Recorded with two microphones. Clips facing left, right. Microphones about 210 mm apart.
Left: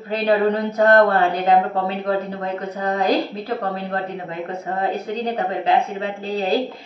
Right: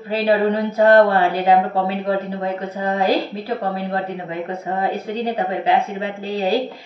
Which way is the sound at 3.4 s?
10° right (ahead or behind).